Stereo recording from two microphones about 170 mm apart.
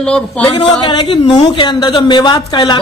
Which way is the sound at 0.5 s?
30° left (ahead or behind).